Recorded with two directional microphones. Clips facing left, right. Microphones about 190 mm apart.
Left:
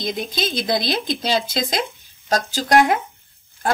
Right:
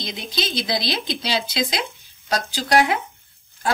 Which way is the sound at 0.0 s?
50° left (ahead or behind).